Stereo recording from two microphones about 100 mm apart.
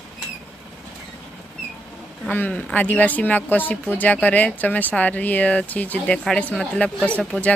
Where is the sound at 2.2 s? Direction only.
15° left (ahead or behind).